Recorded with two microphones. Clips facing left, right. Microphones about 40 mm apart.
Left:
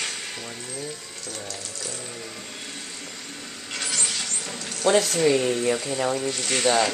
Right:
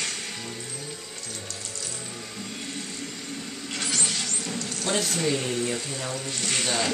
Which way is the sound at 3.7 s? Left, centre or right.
Centre.